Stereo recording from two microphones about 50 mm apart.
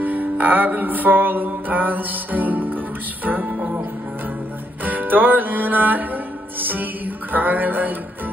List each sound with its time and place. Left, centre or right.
0.0 s music: right
4.8 s music: right